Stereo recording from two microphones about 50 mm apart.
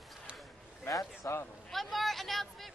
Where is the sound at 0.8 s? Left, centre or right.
Left.